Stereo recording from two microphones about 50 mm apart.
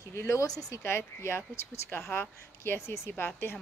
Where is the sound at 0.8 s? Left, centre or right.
Left.